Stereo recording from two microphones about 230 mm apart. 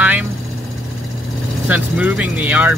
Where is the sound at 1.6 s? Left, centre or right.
Centre.